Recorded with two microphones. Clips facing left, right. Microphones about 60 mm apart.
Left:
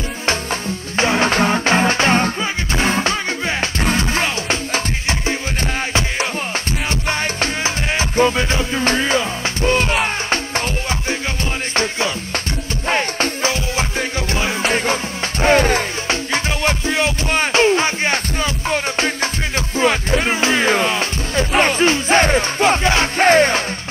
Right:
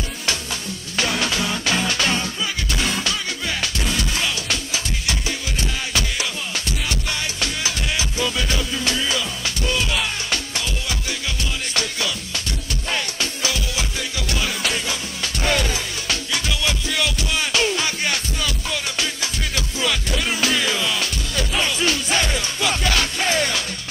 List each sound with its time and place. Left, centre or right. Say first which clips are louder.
0.3 s music: left 7 dB; left
21.5 s music: left 7 dB; left